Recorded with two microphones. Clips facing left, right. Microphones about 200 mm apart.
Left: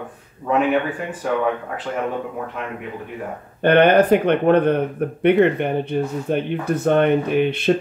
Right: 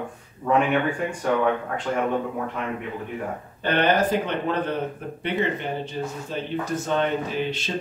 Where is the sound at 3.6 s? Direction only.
60° left (ahead or behind).